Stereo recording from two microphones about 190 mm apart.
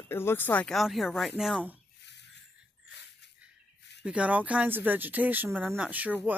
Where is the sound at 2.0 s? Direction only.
65° left (ahead or behind).